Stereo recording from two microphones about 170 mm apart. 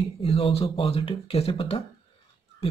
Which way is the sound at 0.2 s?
35° left (ahead or behind).